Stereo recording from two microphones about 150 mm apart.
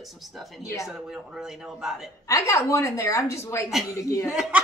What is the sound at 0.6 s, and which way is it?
Speech, 20° left (ahead or behind).